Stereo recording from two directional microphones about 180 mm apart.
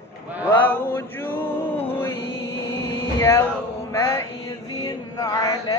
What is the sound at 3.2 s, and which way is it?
Music, 15° left (ahead or behind).